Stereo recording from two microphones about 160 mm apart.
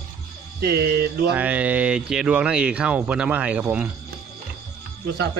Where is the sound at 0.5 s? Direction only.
80° right.